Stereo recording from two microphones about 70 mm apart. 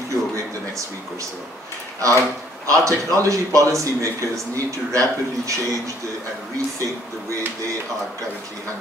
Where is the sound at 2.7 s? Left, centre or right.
Right.